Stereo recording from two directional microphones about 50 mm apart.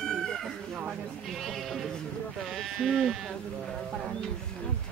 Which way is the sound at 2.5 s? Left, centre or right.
Centre.